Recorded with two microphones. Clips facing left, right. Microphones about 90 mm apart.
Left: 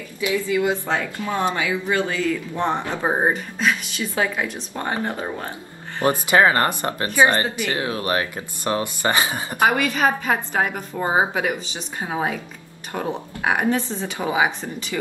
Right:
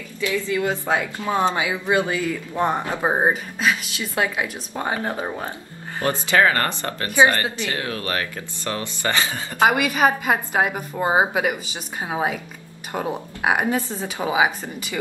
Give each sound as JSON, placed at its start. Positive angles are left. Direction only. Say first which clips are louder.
{"t": 0.2, "sound": "speech", "louder": "left 2 dB", "side_deg": 15}
{"t": 0.8, "sound": "a woman's voice", "louder": "right 2 dB", "side_deg": -15}
{"t": 4.7, "sound": "a woman's voice", "louder": "right 1 dB", "side_deg": -10}
{"t": 6.0, "sound": "speech", "louder": "left 2 dB", "side_deg": 20}
{"t": 9.7, "sound": "a woman's voice", "louder": "right 1 dB", "side_deg": -10}